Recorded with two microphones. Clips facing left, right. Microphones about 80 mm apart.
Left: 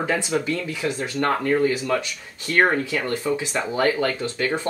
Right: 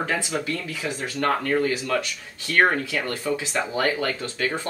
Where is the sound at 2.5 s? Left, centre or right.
Centre.